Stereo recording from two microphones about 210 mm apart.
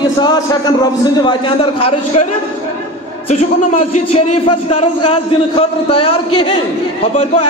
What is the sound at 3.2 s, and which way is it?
A man's voice, 35° left (ahead or behind).